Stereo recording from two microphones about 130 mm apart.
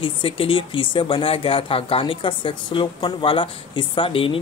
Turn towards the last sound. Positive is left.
turn(degrees=45)  # may be behind; listen again after turning